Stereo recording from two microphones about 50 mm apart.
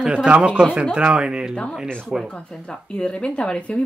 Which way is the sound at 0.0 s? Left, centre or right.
Right.